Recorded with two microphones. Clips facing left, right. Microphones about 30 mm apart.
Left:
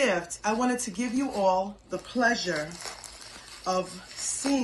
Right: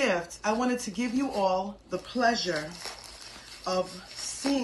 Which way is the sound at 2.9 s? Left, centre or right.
Left.